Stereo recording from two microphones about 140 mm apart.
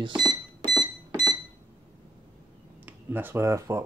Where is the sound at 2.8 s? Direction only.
15° right (ahead or behind).